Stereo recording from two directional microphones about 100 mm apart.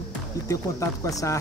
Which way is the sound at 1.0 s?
35° left (ahead or behind).